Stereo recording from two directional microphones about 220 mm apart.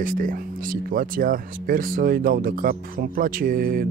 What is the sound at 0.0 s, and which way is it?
Speech, 40° right (ahead or behind).